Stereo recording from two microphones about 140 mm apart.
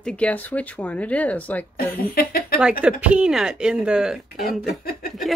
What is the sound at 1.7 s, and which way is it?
Speech, 90° left.